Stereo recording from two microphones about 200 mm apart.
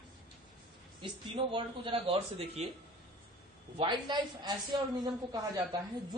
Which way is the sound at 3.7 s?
20° right (ahead or behind).